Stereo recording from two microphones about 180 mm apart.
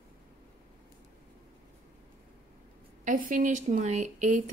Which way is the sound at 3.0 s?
45° right (ahead or behind).